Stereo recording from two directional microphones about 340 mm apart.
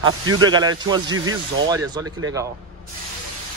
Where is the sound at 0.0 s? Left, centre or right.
Right.